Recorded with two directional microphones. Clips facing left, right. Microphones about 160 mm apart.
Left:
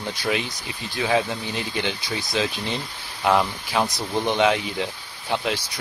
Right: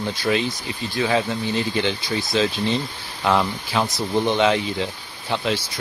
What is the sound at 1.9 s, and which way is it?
Speech, 5° left (ahead or behind).